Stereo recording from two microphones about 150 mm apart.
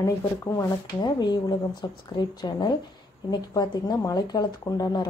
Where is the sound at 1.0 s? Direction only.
30° left (ahead or behind).